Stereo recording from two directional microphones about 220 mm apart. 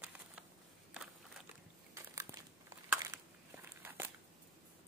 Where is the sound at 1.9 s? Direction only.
15° right (ahead or behind).